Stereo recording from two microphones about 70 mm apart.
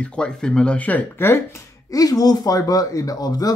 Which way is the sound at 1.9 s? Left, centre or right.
Left.